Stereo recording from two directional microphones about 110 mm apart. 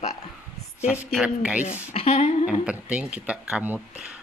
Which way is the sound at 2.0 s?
75° left (ahead or behind).